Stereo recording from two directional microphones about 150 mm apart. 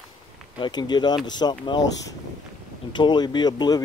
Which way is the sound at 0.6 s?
30° left (ahead or behind).